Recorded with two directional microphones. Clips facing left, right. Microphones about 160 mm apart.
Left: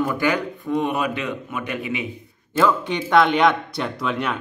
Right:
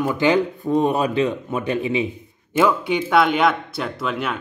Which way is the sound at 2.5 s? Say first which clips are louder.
Right 2 dB; 10° right (ahead or behind).